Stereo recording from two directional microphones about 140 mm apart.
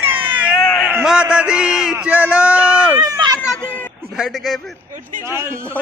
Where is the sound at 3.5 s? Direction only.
10° left (ahead or behind).